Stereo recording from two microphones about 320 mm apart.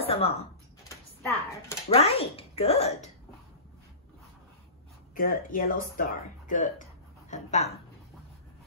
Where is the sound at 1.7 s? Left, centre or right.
Centre.